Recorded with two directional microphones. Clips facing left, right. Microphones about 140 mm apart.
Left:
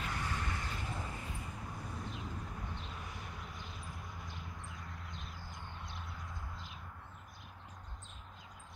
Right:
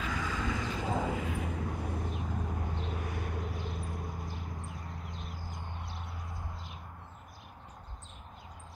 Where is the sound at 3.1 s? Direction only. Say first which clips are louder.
Right 9 dB; 60° right (ahead or behind).